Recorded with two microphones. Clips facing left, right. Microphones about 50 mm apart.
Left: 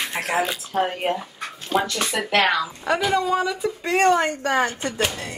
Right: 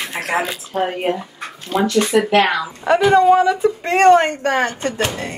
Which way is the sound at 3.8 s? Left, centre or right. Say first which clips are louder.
Right 6 dB; right.